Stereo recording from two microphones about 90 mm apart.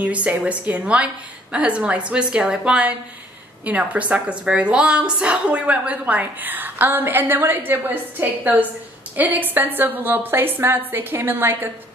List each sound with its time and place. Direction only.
0.0 s a woman's voice: 15° right (ahead or behind)